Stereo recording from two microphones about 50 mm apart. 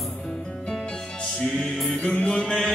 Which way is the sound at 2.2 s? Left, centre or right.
Left.